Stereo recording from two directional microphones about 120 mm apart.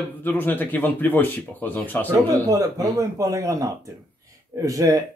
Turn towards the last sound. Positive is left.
turn(degrees=-30)  # may be behind; listen again after turning